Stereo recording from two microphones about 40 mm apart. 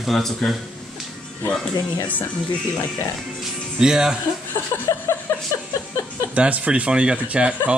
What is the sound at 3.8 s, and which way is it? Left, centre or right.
Speech, centre.